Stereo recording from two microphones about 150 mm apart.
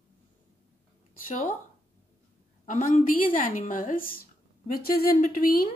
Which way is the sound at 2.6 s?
60° left (ahead or behind).